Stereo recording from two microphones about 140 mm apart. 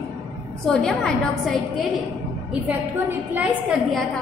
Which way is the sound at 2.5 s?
10° right (ahead or behind).